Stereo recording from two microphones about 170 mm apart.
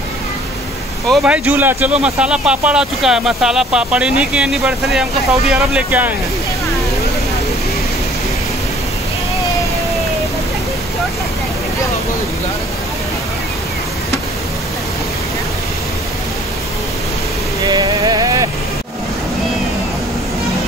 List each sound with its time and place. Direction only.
1.0 s speech: 5° right (ahead or behind)
17.6 s music: 25° right (ahead or behind)